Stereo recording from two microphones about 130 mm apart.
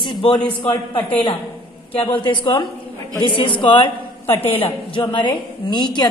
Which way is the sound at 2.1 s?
40° left (ahead or behind).